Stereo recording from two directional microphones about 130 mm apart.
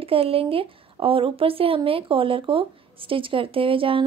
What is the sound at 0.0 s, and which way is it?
Speech, 45° right (ahead or behind).